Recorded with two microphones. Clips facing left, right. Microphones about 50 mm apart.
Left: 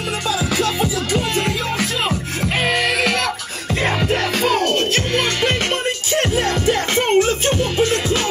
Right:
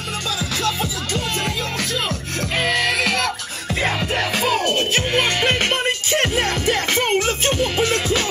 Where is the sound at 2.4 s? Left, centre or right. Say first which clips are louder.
Left 1 dB; centre.